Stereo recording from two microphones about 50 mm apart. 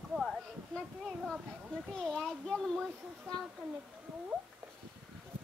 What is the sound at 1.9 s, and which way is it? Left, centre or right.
A child's voice, centre.